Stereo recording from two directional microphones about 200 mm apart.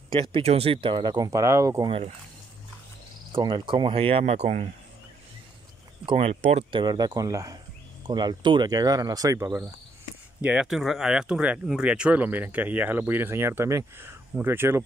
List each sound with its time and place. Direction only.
0.1 s speech: 25° right (ahead or behind)
1.9 s speech: 30° right (ahead or behind)
3.3 s speech: 25° right (ahead or behind)
6.0 s speech: 30° right (ahead or behind)
10.4 s speech: 5° right (ahead or behind)